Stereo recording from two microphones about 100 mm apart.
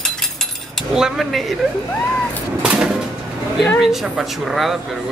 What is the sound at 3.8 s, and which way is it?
Speech, 5° right (ahead or behind).